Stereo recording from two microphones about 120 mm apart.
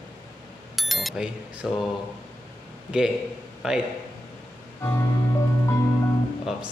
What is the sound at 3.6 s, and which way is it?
Speech, 5° right (ahead or behind).